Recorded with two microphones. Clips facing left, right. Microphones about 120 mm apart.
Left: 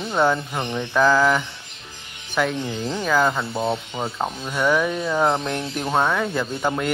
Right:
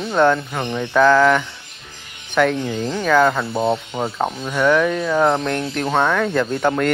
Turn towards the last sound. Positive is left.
turn(degrees=5)  # may be behind; listen again after turning